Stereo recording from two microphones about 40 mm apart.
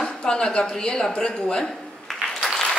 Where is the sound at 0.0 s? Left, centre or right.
Left.